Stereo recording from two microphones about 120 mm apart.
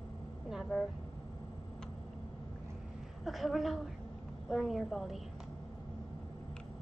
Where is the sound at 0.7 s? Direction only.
5° left (ahead or behind).